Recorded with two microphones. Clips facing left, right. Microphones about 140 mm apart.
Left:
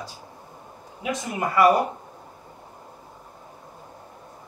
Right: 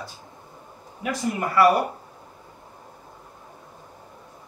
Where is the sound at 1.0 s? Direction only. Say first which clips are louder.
Right 1 dB; 20° left (ahead or behind).